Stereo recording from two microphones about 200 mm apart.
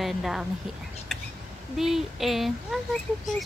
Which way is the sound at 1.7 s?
Centre (ahead or behind).